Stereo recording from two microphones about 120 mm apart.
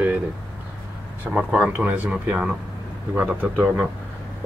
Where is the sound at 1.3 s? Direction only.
10° right (ahead or behind).